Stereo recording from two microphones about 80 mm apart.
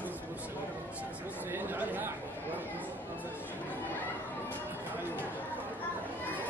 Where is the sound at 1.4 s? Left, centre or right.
Right.